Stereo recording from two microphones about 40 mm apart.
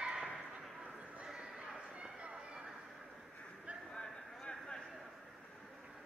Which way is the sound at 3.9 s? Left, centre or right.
Left.